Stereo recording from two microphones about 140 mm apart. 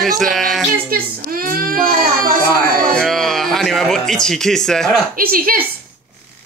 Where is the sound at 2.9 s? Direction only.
Centre (ahead or behind).